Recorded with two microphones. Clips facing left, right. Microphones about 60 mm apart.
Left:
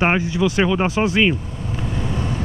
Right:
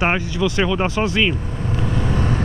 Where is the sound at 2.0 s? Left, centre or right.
Right.